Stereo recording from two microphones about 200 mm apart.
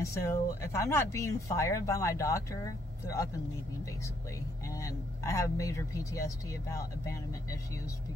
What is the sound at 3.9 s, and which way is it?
Speech, 15° left (ahead or behind).